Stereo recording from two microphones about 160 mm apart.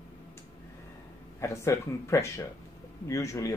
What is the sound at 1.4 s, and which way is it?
Speech, 15° left (ahead or behind).